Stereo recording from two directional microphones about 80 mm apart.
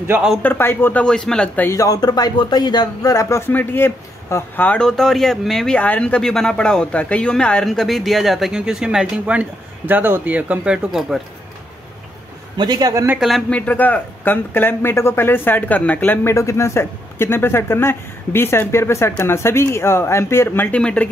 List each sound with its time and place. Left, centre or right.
0.4 s speech: left
1.0 s speech: centre
1.7 s speech: left
4.7 s speech: centre
5.8 s speech: centre
7.6 s speech: centre
12.5 s speech: right
13.5 s speech: centre
16.3 s speech: left
20.7 s speech: centre